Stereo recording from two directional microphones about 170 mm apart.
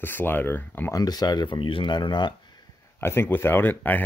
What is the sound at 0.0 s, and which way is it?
Speech, 10° left (ahead or behind).